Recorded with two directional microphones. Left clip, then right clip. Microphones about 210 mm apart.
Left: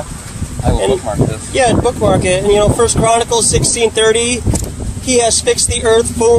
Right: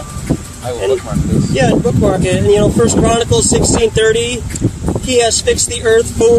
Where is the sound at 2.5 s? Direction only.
25° left (ahead or behind).